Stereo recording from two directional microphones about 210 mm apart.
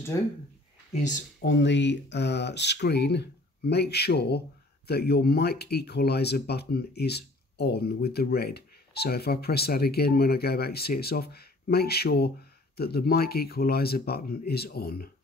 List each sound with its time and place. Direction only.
0.1 s speech: 15° left (ahead or behind)
1.4 s speech: 55° left (ahead or behind)